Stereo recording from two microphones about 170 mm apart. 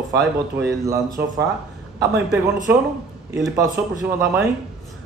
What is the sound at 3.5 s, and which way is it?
Speech, 20° right (ahead or behind).